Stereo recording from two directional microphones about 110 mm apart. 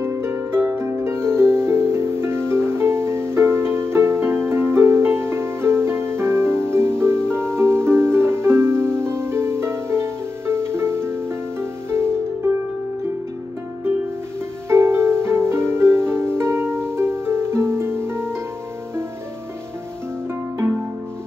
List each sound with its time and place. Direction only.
0.0 s harp: 25° right (ahead or behind)
12.4 s music: 25° right (ahead or behind)
14.7 s harp: 25° right (ahead or behind)